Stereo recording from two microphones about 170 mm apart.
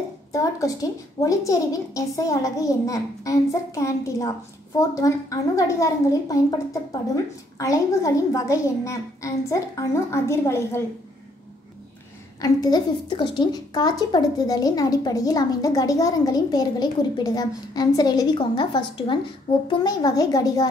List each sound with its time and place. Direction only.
0.3 s a woman's voice: 20° left (ahead or behind)
12.4 s a woman's voice: 25° left (ahead or behind)